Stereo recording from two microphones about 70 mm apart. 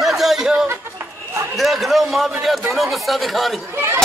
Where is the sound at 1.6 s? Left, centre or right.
Centre.